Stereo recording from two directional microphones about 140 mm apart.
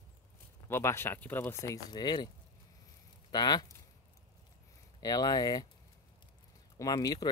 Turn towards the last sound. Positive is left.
turn(degrees=25)  # may be behind; listen again after turning